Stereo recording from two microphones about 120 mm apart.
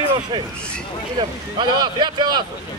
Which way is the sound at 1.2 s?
40° right (ahead or behind).